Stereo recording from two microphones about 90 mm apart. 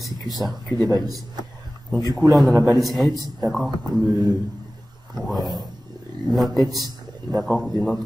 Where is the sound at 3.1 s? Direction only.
45° right (ahead or behind).